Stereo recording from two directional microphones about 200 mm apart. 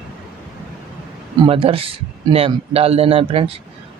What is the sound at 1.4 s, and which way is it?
A man's voice, 30° right (ahead or behind).